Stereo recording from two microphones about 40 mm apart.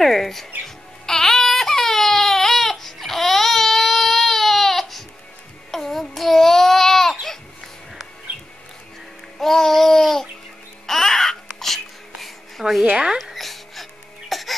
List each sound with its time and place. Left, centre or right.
0.0 s speech: centre
0.7 s music: centre
5.7 s babbling: centre
9.4 s a sound: centre
10.9 s music: centre
12.9 s speech: right
13.2 s a sound: centre
14.3 s music: centre